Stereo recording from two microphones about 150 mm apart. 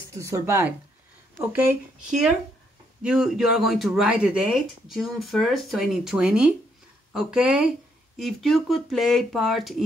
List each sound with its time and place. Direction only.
0.2 s speech: 15° right (ahead or behind); by 9.8 s centre (ahead or behind)